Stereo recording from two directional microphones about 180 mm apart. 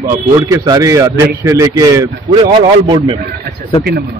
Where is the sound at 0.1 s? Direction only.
20° right (ahead or behind).